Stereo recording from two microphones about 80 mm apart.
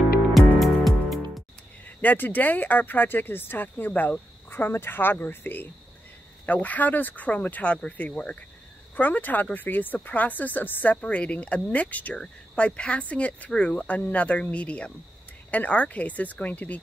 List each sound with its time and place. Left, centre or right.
0.6 s music: centre
2.0 s speech: left